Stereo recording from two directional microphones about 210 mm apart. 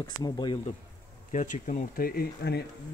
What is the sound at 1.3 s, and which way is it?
Speech, 35° left (ahead or behind).